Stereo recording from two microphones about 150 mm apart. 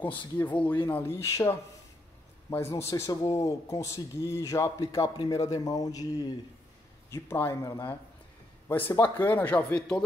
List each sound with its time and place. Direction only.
0.4 s speech: 10° left (ahead or behind)
7.1 s speech: 15° left (ahead or behind)